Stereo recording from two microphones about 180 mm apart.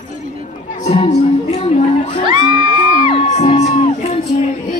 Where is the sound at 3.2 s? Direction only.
35° left (ahead or behind).